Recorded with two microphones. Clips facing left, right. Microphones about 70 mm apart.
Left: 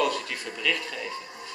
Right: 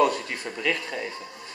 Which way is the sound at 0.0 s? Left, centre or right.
Right.